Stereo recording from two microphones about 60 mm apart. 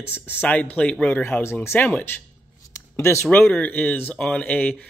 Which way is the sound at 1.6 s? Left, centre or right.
Left.